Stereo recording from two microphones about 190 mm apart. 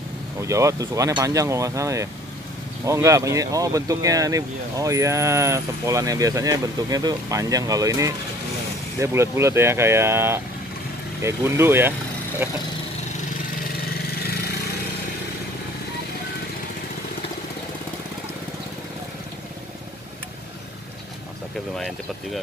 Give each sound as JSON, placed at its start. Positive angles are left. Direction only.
{"t": 0.4, "sound": "speech", "side_deg": -15}
{"t": 21.7, "sound": "speech", "side_deg": 0}